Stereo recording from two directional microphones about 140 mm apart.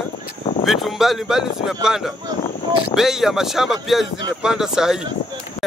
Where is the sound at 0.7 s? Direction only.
Centre (ahead or behind).